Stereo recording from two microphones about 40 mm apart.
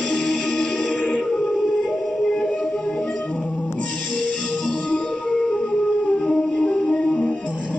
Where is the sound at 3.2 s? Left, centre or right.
Left.